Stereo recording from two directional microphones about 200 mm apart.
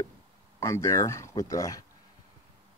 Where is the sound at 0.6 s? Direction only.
15° left (ahead or behind).